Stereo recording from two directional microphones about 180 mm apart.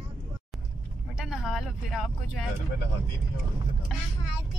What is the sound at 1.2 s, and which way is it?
Vehicle, centre (ahead or behind).